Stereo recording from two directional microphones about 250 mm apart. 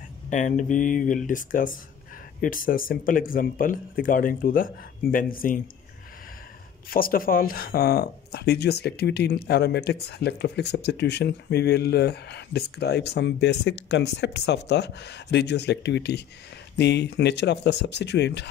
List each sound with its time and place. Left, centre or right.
0.3 s speech: left
6.9 s speech: left